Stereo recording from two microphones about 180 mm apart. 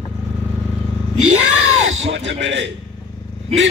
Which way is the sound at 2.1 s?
90° right.